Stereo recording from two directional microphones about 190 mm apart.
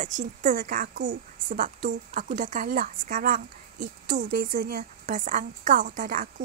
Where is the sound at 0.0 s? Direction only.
40° right (ahead or behind).